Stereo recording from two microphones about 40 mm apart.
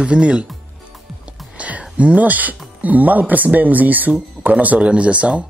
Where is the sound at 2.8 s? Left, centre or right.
Right.